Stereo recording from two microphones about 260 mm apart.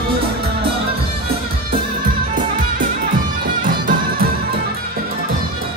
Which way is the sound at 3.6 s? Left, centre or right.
Right.